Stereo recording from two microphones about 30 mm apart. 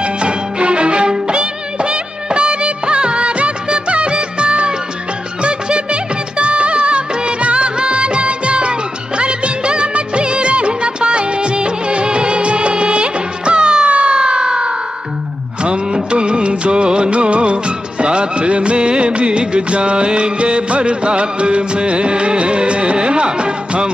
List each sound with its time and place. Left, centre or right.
0.0 s music: right
1.2 s music of bollywood: right
13.8 s siren: right
16.1 s music of bollywood: right